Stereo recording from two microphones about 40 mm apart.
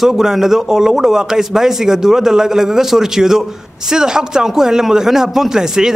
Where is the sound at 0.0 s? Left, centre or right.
Centre.